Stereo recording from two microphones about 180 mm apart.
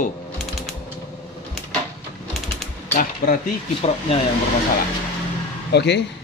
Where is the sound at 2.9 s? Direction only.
45° left (ahead or behind).